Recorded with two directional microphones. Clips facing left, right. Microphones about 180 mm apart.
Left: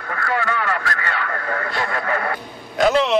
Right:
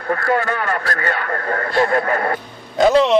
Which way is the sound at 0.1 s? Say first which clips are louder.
Right 5 dB; 40° right (ahead or behind).